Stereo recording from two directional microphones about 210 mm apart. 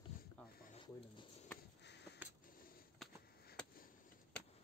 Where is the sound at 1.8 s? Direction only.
55° left (ahead or behind).